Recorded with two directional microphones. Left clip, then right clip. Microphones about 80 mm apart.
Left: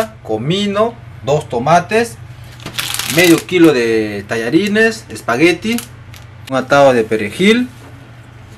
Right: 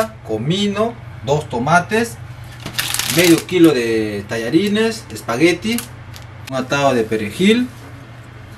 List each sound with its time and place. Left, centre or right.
0.3 s speech: left
2.6 s mechanisms: right
3.2 s speech: left